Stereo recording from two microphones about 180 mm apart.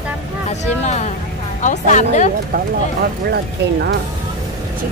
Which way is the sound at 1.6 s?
40° left (ahead or behind).